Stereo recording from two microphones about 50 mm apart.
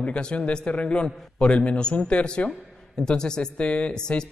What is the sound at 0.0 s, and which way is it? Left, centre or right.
A woman's voice, left.